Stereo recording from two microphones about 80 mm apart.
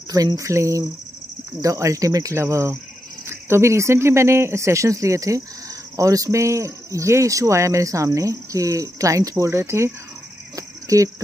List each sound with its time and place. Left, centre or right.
0.1 s cricket: right
1.6 s speech: right
10.5 s cricket: right